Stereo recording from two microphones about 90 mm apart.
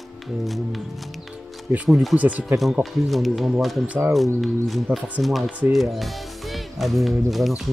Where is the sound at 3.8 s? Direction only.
15° right (ahead or behind).